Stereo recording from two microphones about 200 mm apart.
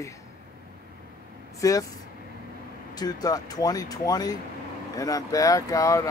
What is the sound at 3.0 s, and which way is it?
Speech, 20° left (ahead or behind).